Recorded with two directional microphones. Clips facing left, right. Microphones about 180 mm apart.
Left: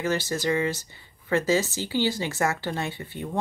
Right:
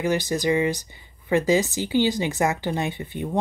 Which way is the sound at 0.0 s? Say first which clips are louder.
Right 3 dB; 15° right (ahead or behind).